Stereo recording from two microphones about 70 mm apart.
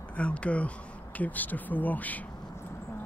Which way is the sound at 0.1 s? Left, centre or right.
Centre.